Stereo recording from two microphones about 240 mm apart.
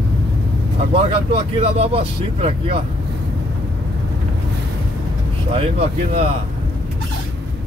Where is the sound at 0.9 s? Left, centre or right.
Right.